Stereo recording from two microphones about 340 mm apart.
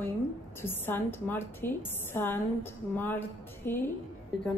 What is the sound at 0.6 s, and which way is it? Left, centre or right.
Speech, centre.